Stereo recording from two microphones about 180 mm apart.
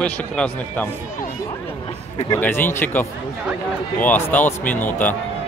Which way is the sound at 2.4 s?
10° left (ahead or behind).